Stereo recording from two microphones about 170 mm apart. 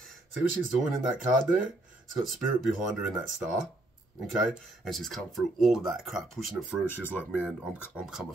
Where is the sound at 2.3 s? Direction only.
Centre (ahead or behind).